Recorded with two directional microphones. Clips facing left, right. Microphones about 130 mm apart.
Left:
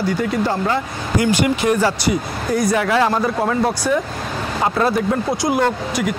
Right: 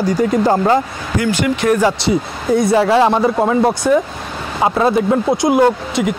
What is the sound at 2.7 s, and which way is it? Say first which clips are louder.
Speech: right 5 dB; 25° right (ahead or behind).